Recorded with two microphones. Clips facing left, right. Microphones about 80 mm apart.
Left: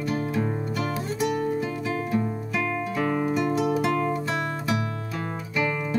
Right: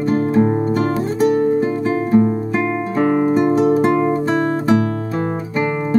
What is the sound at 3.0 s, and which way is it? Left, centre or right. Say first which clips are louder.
Guitar: right 10 dB; right.